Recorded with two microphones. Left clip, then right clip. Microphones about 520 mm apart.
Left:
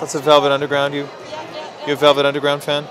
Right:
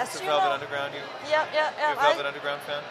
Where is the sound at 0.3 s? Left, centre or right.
Left.